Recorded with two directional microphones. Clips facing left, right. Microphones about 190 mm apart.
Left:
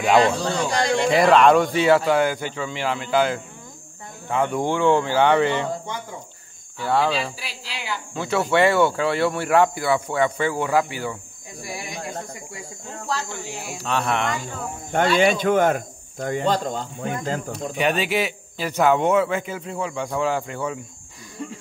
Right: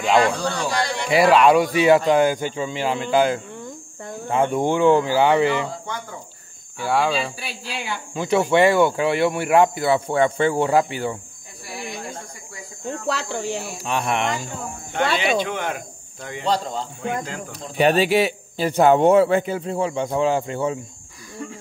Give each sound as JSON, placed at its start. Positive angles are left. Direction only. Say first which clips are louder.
{"t": 0.2, "sound": "speech", "louder": "left 1 dB", "side_deg": 20}
{"t": 1.1, "sound": "a man's voice", "louder": "right 1 dB", "side_deg": -5}
{"t": 1.8, "sound": "speech", "louder": "right 2 dB", "side_deg": -15}
{"t": 6.9, "sound": "speech", "louder": "even", "side_deg": -5}
{"t": 7.3, "sound": "speech", "louder": "right 4 dB", "side_deg": -55}
{"t": 8.1, "sound": "speech", "louder": "right 3 dB", "side_deg": -15}
{"t": 13.0, "sound": "cricket", "louder": "right 1 dB", "side_deg": -70}
{"t": 13.8, "sound": "speech", "louder": "even", "side_deg": -15}
{"t": 14.9, "sound": "speech", "louder": "left 3 dB", "side_deg": 45}
{"t": 17.5, "sound": "a man's voice", "louder": "right 6 dB", "side_deg": -35}